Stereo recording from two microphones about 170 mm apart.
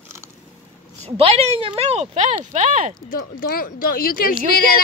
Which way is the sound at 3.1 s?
60° left (ahead or behind).